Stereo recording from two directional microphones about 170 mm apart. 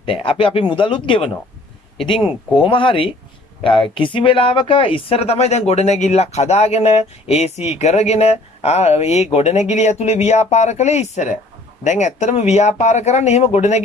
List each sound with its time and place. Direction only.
0.0 s speech: 30° left (ahead or behind)
2.5 s speech: 30° left (ahead or behind)